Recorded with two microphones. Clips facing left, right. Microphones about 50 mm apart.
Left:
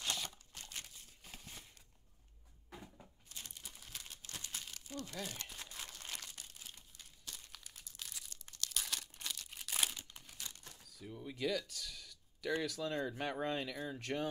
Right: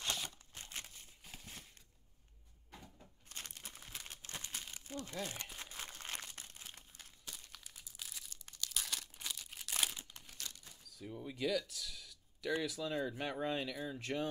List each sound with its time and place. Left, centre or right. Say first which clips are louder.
0.6 s crumpling: right 1 dB; right
1.2 s a sound: even; centre
3.3 s crumpling: right 3 dB; right
3.7 s crumpling: right 2 dB; right
7.4 s crumpling: even; centre
10.4 s a sound: right 1 dB; centre
10.9 s door: right 2 dB; centre
11.2 s speech: right 1 dB; centre